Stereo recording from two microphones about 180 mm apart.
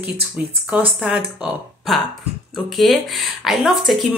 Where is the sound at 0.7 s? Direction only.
5° right (ahead or behind).